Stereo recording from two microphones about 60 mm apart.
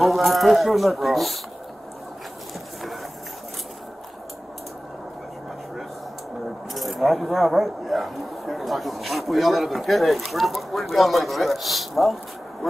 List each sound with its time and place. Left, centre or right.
0.0 s speech: centre
6.7 s speech: centre